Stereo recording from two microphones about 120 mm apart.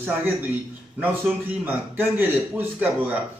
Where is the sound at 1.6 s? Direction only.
15° right (ahead or behind).